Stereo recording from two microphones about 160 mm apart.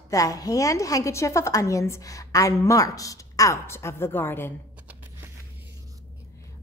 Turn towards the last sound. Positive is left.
turn(degrees=-10)  # may be behind; listen again after turning